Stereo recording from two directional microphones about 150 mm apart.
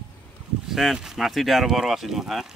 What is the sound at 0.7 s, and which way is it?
Speech, centre (ahead or behind).